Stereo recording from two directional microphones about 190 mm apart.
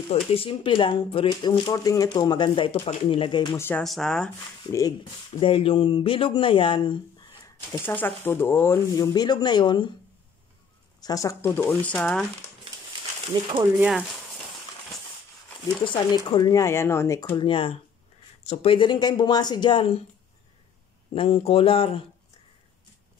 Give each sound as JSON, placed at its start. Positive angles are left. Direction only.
{"t": 0.1, "sound": "speech", "side_deg": 30}
{"t": 3.5, "sound": "speech", "side_deg": 10}
{"t": 5.4, "sound": "speech", "side_deg": 30}
{"t": 7.8, "sound": "speech", "side_deg": 10}
{"t": 11.0, "sound": "speech", "side_deg": 20}
{"t": 13.3, "sound": "speech", "side_deg": -25}
{"t": 13.7, "sound": "speech", "side_deg": -5}
{"t": 15.8, "sound": "speech", "side_deg": 25}
{"t": 21.1, "sound": "speech", "side_deg": 30}